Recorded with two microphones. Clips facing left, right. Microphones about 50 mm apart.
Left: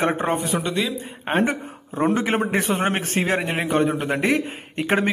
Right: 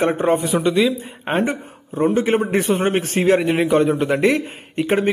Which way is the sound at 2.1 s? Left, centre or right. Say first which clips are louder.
Right 4 dB; left.